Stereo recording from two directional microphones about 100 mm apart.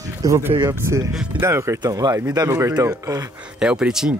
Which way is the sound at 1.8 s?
40° right (ahead or behind).